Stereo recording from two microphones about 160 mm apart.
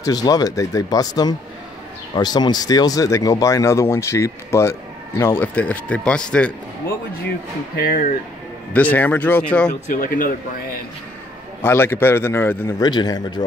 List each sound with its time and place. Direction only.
0.0 s speech: 25° left (ahead or behind); by 6.5 s 5° left (ahead or behind)
7.7 s speech: 65° left (ahead or behind)
8.7 s speech: 10° left (ahead or behind)
9.7 s speech: 55° left (ahead or behind)
11.6 s speech: 15° left (ahead or behind)
12.8 s speech: 25° left (ahead or behind)